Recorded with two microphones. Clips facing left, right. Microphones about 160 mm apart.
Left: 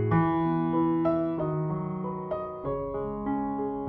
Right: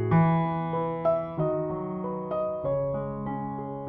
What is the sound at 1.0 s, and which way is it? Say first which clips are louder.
Music: even; centre (ahead or behind).